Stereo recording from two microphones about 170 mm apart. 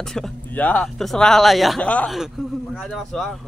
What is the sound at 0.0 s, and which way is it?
Speech, 5° left (ahead or behind).